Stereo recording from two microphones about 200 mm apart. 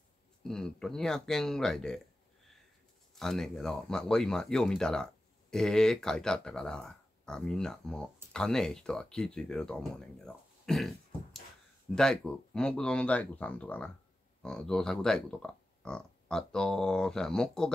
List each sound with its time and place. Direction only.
0.4 s speech: centre (ahead or behind)
3.2 s speech: centre (ahead or behind)